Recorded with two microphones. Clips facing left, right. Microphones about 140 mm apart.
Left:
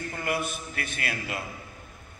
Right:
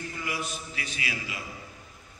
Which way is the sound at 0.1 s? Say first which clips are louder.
Left 8 dB; 55° left (ahead or behind).